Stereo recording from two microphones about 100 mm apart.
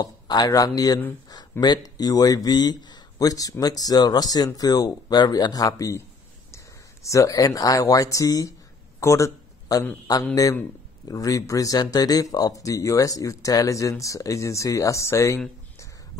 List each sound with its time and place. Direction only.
0.0 s speech: 40° left (ahead or behind)